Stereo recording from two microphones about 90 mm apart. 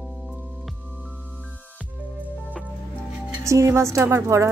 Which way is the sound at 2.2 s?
15° right (ahead or behind).